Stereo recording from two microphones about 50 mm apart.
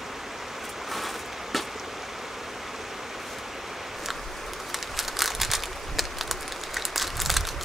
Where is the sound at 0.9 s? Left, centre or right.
Centre.